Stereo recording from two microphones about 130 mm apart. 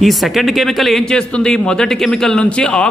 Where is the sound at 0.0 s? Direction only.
Centre (ahead or behind).